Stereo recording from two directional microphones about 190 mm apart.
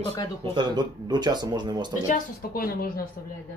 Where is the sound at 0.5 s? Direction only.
25° right (ahead or behind).